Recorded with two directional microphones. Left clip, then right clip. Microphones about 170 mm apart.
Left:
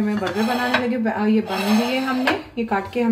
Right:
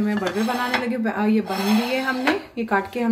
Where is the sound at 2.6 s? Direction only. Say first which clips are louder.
Even; 35° right (ahead or behind).